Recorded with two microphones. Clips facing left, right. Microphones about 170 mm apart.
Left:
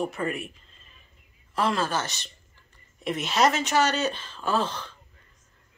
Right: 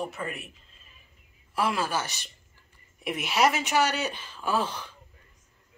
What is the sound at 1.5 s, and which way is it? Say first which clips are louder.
Speech: left 2 dB; 10° right (ahead or behind).